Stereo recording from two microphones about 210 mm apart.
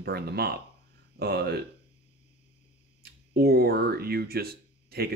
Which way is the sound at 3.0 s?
50° right (ahead or behind).